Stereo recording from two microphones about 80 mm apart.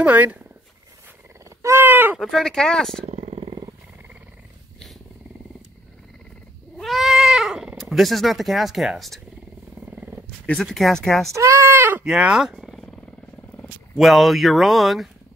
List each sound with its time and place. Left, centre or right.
0.0 s speech: centre
1.8 s a sound: right
2.1 s speech: centre
6.8 s speech: centre
9.8 s wild animals: centre
10.4 s speech: centre
11.3 s speech: right
12.0 s speech: centre
13.9 s speech: centre